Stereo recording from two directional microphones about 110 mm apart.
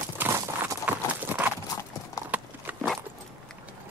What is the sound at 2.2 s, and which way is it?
Clip-clop, 30° left (ahead or behind).